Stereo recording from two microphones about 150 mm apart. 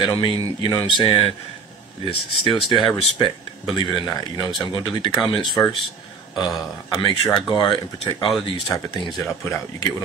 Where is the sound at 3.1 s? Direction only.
30° left (ahead or behind).